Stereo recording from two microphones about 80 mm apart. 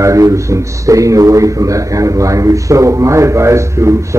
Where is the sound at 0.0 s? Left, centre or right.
Right.